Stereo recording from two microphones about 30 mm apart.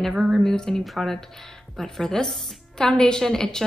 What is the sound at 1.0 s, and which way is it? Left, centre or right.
Speech, centre.